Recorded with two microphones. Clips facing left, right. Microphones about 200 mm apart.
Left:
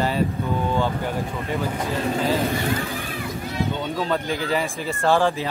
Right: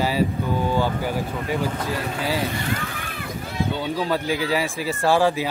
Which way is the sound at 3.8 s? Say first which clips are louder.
Right 1 dB; 5° right (ahead or behind).